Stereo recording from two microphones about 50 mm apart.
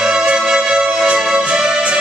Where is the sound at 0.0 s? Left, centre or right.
Centre.